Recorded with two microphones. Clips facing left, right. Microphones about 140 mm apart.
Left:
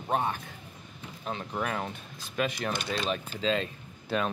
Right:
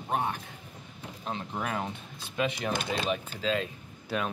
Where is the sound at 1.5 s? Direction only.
20° right (ahead or behind).